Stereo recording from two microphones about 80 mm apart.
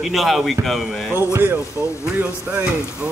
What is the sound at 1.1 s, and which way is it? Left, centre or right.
Speech, right.